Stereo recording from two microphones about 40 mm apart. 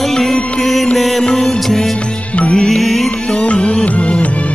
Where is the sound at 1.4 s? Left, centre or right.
Centre.